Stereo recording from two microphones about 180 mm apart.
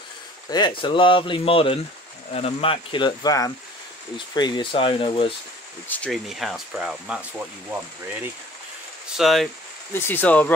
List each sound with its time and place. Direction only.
0.5 s speech: 25° left (ahead or behind)
5.9 s speech: 5° left (ahead or behind)
9.1 s speech: centre (ahead or behind)
9.9 s speech: 10° left (ahead or behind)